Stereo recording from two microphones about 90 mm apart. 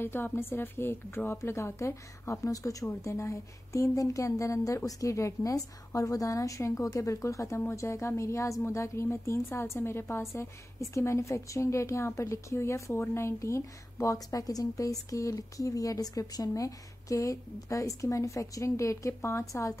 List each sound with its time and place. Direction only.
0.0 s a woman's voice: 25° left (ahead or behind)